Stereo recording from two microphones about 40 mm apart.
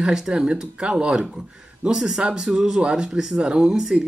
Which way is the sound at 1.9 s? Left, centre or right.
Centre.